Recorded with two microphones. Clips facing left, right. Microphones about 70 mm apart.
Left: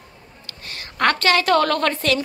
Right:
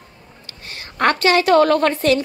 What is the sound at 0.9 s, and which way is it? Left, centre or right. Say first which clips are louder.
Speech: right 2 dB; right.